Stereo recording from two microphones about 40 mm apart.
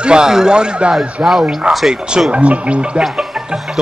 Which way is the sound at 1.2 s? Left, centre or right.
Right.